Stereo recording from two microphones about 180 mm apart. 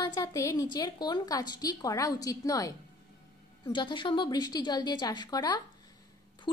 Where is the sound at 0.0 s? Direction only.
20° left (ahead or behind).